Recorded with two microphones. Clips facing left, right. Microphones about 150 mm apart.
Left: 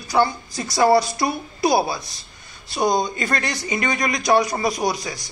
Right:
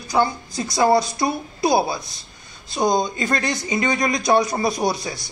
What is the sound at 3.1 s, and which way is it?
A woman's voice, 25° right (ahead or behind).